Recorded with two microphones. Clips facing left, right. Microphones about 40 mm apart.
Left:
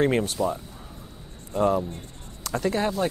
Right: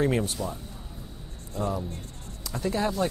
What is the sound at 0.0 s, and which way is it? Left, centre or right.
Speech, left.